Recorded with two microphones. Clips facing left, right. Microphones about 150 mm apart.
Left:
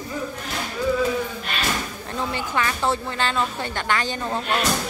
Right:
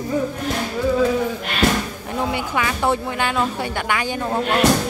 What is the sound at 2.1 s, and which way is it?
Speech, 15° right (ahead or behind).